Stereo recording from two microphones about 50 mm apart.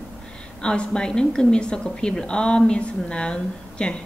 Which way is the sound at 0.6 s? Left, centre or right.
Centre.